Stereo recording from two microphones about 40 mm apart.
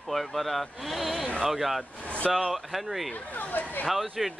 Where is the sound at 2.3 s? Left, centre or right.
Centre.